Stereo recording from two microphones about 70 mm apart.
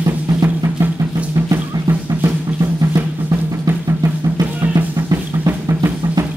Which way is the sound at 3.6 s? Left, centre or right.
Right.